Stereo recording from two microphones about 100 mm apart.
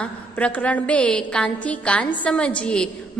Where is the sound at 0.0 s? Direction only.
15° left (ahead or behind).